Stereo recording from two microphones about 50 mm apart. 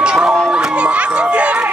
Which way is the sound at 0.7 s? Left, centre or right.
Right.